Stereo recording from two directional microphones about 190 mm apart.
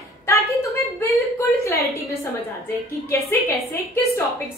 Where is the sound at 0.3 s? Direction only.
15° left (ahead or behind).